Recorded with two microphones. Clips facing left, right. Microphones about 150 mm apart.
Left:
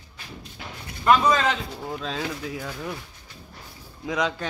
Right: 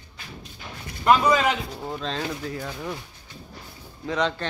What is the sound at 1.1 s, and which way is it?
Speech, 15° right (ahead or behind).